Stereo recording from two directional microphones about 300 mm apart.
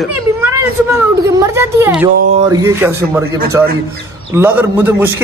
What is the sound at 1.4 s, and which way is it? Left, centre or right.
Speech, centre.